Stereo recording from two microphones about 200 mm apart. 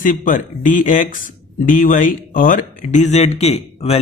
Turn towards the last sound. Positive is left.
turn(degrees=30)  # may be behind; listen again after turning